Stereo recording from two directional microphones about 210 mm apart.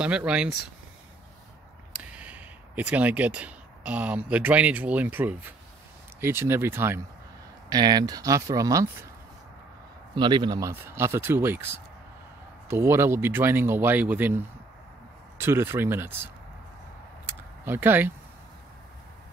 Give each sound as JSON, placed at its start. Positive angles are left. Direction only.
{"t": 0.0, "sound": "speech", "side_deg": -5}
{"t": 2.1, "sound": "speech", "side_deg": -5}
{"t": 10.1, "sound": "speech", "side_deg": -20}
{"t": 17.3, "sound": "a sound", "side_deg": -10}